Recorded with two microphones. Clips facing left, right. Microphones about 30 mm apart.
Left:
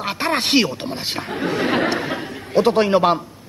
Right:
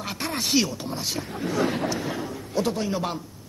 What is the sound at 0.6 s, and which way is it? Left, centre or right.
A man's voice, left.